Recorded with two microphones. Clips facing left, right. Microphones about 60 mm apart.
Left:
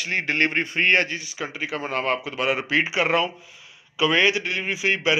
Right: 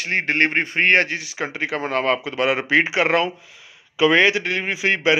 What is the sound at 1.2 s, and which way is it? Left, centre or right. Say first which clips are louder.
A man's voice: right 4 dB; right.